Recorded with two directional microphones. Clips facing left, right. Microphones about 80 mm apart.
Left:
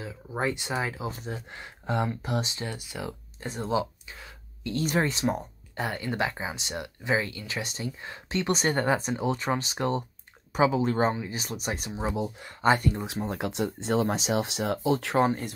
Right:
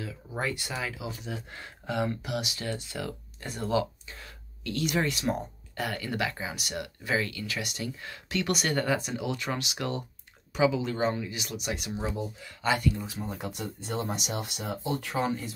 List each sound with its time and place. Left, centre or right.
0.0 s speech: left
1.5 s speech: left
2.6 s speech: centre; by 13.0 s left
13.0 s speech: left
15.1 s speech: left